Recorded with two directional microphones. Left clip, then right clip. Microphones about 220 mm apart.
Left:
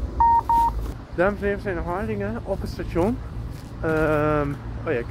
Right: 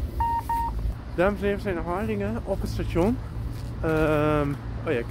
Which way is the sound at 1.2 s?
5° right (ahead or behind).